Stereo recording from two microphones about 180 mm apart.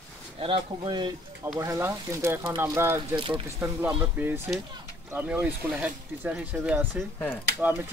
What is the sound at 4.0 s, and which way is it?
Speech, 10° right (ahead or behind).